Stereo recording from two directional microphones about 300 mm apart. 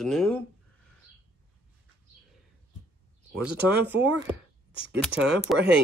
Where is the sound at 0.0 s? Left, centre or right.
Centre.